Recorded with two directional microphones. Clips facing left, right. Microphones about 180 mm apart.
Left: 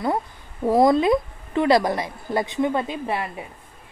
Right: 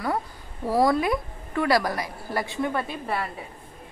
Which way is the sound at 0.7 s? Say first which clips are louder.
Left 5 dB; 20° left (ahead or behind).